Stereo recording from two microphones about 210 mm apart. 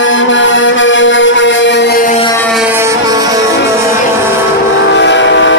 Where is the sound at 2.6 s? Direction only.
10° right (ahead or behind).